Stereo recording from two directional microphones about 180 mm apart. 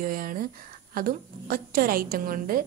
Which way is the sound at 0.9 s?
55° right (ahead or behind).